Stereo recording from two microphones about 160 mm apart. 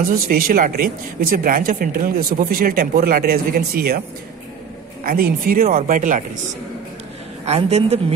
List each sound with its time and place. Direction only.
0.1 s speech: 65° right (ahead or behind)
5.0 s speech: 65° right (ahead or behind)
5.9 s speech: 55° right (ahead or behind)
7.4 s a woman's voice: 40° right (ahead or behind)